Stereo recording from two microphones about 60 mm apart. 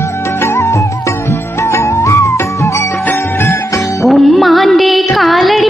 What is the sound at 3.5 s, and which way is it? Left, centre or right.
Music, left.